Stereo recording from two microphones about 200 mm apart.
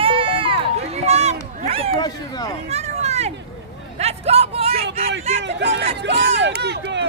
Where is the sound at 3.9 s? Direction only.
30° right (ahead or behind).